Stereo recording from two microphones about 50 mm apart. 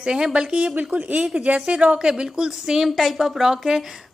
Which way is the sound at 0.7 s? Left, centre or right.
Right.